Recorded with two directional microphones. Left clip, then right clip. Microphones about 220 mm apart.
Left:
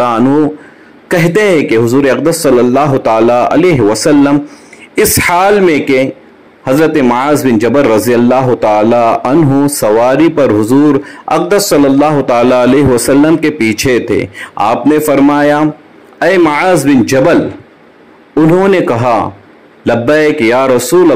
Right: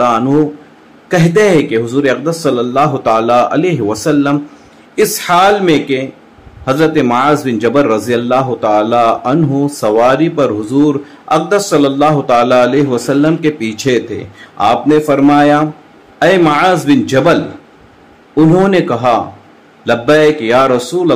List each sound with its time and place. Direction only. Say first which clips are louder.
0.0 s a sound: left 1 dB; 35° left (ahead or behind)
1.0 s a man's voice: left 1 dB; 25° left (ahead or behind)
18.3 s a man's voice: left 2 dB; 30° left (ahead or behind)